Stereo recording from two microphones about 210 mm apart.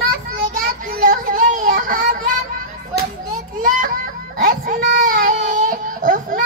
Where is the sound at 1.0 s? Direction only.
40° right (ahead or behind).